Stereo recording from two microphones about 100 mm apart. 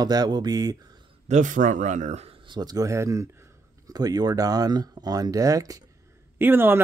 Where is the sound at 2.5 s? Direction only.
40° right (ahead or behind).